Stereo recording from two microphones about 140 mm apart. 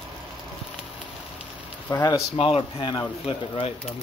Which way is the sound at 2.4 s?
40° left (ahead or behind).